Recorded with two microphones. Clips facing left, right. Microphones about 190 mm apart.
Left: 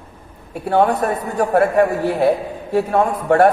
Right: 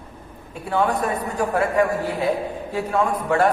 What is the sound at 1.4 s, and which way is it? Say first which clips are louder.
A man's voice: left 6 dB; 60° left (ahead or behind).